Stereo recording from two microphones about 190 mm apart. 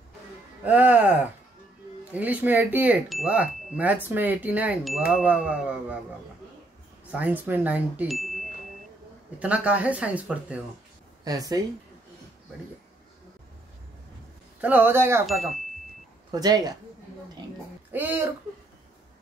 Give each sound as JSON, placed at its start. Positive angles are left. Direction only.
{"t": 0.7, "sound": "chime", "side_deg": -10}
{"t": 7.1, "sound": "chime", "side_deg": -10}
{"t": 11.2, "sound": "speech", "side_deg": -20}
{"t": 14.6, "sound": "chime", "side_deg": -10}
{"t": 15.2, "sound": "speech", "side_deg": 0}
{"t": 16.3, "sound": "speech", "side_deg": -20}
{"t": 17.9, "sound": "chime", "side_deg": -10}